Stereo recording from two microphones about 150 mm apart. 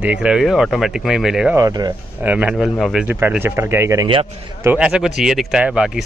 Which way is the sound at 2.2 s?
10° right (ahead or behind).